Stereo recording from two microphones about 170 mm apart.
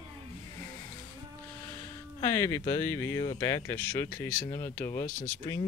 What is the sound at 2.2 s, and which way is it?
Speech, 20° left (ahead or behind).